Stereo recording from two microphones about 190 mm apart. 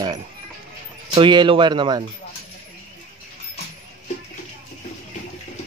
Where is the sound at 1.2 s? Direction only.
25° right (ahead or behind).